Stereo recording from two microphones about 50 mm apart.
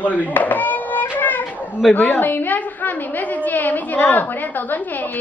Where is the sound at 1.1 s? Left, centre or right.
Left.